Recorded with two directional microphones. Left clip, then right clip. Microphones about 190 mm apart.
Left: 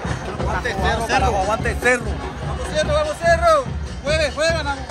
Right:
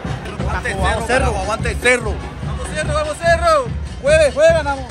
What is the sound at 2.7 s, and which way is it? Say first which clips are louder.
Speech: left 2 dB; 20° left (ahead or behind).